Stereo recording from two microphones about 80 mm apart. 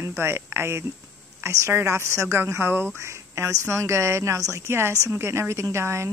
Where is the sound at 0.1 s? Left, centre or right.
Right.